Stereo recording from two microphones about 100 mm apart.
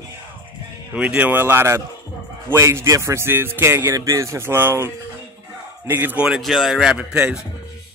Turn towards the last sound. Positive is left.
turn(degrees=-15)  # may be behind; listen again after turning